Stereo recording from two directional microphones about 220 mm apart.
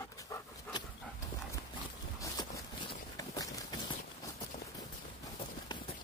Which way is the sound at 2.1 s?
15° left (ahead or behind).